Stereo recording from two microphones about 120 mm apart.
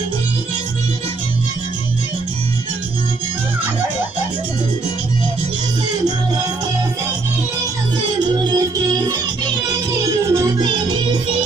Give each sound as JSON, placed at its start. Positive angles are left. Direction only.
{"t": 8.5, "sound": "music", "side_deg": -35}
{"t": 10.3, "sound": "music", "side_deg": -35}